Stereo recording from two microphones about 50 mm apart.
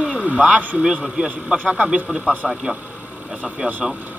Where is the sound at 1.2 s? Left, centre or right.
Right.